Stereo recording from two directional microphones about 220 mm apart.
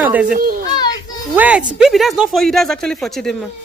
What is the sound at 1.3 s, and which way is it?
Speech, 5° right (ahead or behind).